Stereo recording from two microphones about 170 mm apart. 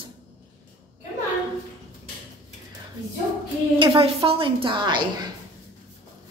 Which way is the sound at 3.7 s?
30° right (ahead or behind).